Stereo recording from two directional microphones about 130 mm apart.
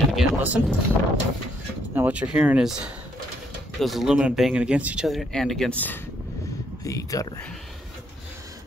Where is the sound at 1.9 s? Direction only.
10° right (ahead or behind); by 6.0 s 15° left (ahead or behind).